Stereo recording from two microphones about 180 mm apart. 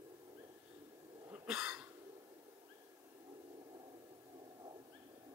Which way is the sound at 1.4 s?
5° right (ahead or behind).